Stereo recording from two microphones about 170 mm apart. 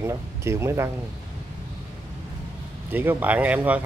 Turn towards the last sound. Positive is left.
turn(degrees=-10)  # may be behind; listen again after turning